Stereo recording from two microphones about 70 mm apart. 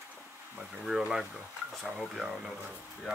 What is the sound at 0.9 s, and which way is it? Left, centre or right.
Speech, centre.